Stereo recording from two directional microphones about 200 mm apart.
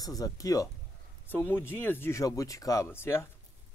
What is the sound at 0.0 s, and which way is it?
Speech, 20° left (ahead or behind).